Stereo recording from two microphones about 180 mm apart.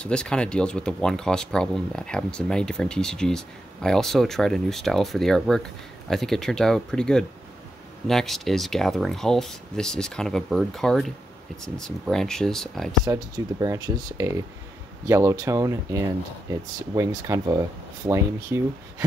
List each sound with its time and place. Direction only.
0.0 s speech: 5° left (ahead or behind)
13.0 s speech: 20° right (ahead or behind)